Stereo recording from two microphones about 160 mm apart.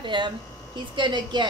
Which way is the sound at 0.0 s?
30° right (ahead or behind).